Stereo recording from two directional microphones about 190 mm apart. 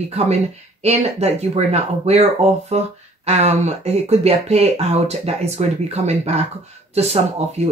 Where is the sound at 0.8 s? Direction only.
35° right (ahead or behind).